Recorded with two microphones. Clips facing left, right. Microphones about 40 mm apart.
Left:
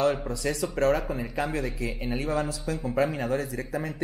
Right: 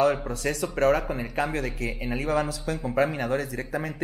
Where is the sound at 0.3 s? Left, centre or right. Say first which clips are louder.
Right 1 dB; right.